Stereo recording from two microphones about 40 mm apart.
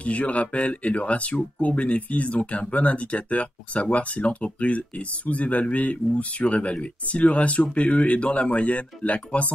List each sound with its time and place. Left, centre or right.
0.0 s speech: left